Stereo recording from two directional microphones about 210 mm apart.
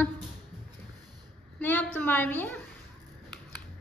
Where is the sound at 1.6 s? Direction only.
10° left (ahead or behind).